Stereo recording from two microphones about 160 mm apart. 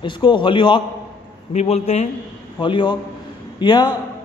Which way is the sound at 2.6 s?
30° left (ahead or behind).